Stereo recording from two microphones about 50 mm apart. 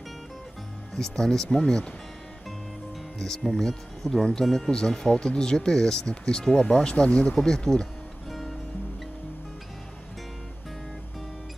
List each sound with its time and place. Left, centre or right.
0.9 s speech: centre
3.2 s speech: centre
8.3 s music: centre